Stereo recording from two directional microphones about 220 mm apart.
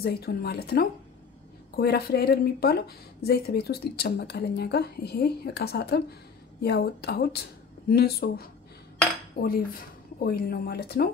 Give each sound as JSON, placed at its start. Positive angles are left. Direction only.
{"t": 0.0, "sound": "a woman's voice", "side_deg": 45}